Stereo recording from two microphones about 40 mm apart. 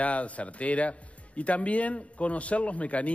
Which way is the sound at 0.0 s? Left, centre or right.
Left.